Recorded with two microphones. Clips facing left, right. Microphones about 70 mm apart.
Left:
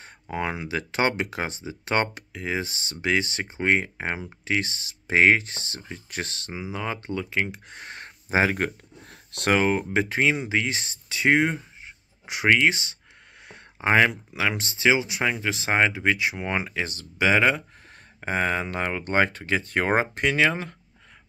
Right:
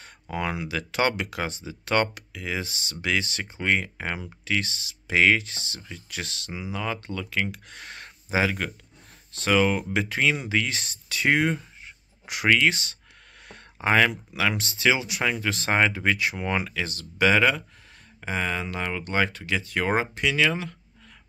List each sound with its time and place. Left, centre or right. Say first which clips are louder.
0.0 s speech: left 1 dB; left
6.5 s speech: right 1 dB; left
9.1 s a sound: left 5 dB; left
9.5 s speech: even; left
18.2 s speech: left 3 dB; left